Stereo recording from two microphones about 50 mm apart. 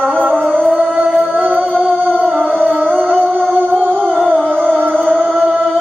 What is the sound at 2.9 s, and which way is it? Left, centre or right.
Music, right.